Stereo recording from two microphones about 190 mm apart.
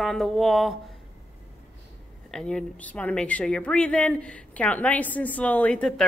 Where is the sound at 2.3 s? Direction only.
5° left (ahead or behind).